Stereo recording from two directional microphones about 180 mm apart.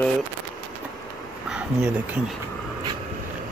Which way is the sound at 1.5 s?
5° right (ahead or behind).